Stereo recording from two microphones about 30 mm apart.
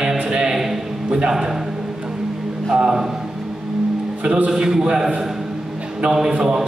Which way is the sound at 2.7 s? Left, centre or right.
Centre.